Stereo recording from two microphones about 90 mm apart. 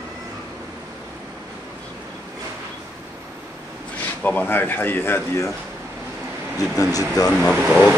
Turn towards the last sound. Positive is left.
turn(degrees=5)  # may be behind; listen again after turning